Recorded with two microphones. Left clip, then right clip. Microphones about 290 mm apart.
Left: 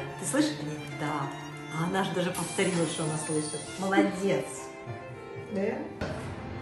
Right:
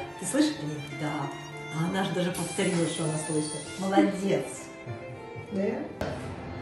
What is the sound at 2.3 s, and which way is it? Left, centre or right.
Speech, centre.